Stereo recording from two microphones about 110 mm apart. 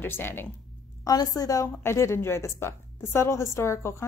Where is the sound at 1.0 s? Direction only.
35° left (ahead or behind).